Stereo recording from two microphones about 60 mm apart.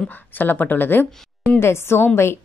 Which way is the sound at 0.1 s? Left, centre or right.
Left.